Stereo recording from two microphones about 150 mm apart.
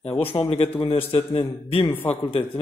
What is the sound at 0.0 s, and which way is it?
A man's voice, 40° left (ahead or behind).